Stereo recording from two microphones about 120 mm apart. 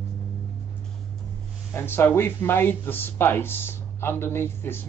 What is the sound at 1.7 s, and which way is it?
Speech, 20° left (ahead or behind).